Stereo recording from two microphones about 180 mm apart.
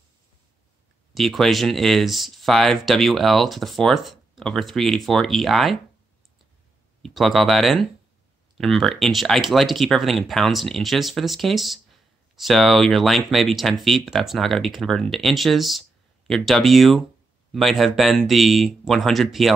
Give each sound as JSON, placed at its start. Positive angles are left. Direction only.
{"t": 1.1, "sound": "speech", "side_deg": 0}
{"t": 7.0, "sound": "speech", "side_deg": 0}